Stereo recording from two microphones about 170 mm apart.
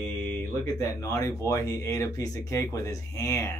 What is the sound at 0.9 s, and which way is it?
Speech, 20° left (ahead or behind).